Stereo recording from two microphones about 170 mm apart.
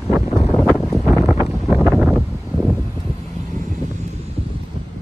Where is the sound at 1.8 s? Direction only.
5° right (ahead or behind).